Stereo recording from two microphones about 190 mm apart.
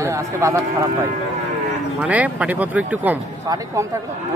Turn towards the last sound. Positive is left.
turn(degrees=-15)  # may be behind; listen again after turning